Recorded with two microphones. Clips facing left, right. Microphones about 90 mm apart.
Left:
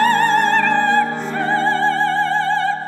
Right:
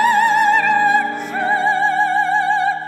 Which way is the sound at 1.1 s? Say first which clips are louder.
Even; 25° left (ahead or behind).